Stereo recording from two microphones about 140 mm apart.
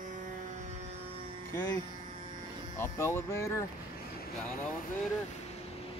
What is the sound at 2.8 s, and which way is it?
Speech, 20° left (ahead or behind).